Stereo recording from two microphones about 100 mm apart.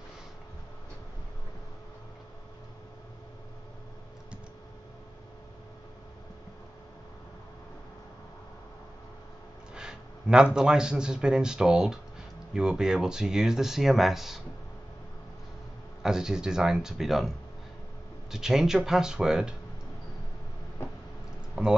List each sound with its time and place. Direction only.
9.8 s a man's voice: 10° right (ahead or behind)
16.0 s speech: 5° right (ahead or behind)
18.3 s speech: 5° right (ahead or behind)
20.8 s a sound: 25° left (ahead or behind)